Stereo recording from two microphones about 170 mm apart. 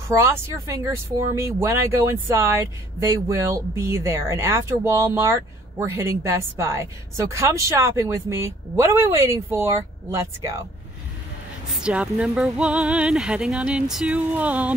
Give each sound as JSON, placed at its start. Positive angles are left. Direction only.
{"t": 0.1, "sound": "speech", "side_deg": -15}
{"t": 11.7, "sound": "speech", "side_deg": -5}